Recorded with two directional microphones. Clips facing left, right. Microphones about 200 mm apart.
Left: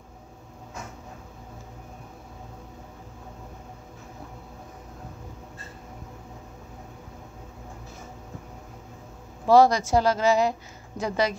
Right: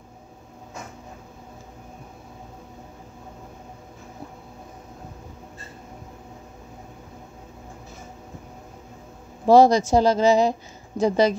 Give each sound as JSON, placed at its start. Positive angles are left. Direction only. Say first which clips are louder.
{"t": 9.5, "sound": "speech", "louder": "right 3 dB", "side_deg": -20}